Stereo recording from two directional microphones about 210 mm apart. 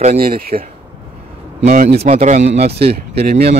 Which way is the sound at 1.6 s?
35° right (ahead or behind).